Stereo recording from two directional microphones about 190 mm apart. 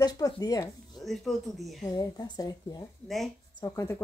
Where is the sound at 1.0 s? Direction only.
Centre (ahead or behind).